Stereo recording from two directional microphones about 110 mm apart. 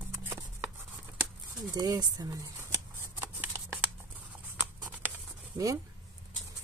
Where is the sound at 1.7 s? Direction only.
35° right (ahead or behind).